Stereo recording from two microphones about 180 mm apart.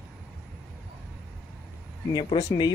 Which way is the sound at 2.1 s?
25° left (ahead or behind).